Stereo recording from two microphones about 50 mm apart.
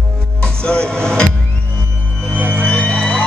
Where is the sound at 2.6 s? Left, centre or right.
Left.